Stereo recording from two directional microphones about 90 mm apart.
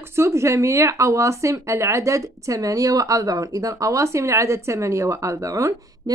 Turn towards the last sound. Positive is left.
turn(degrees=-40)  # may be behind; listen again after turning